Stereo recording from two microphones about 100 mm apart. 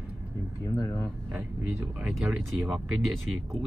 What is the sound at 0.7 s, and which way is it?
Speech, 35° left (ahead or behind).